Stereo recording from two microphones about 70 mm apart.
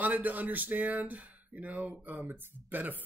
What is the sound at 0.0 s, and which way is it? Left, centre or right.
Speech, right.